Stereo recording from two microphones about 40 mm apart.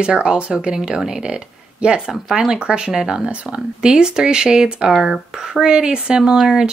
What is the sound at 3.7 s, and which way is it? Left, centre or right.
Speech, centre.